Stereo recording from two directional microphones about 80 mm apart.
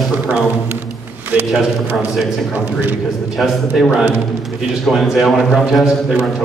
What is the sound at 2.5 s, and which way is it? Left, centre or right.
Speech, right.